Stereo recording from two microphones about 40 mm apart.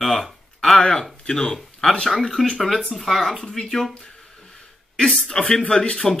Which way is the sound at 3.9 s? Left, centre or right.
Centre.